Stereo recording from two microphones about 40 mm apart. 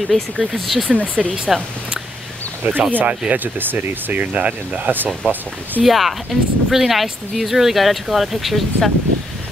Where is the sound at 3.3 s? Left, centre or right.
Right.